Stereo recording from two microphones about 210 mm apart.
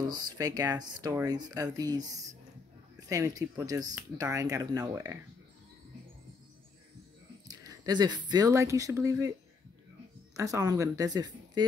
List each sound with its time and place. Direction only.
0.4 s speech: 20° right (ahead or behind)
7.4 s speech: 15° right (ahead or behind)
10.3 s speech: 15° right (ahead or behind)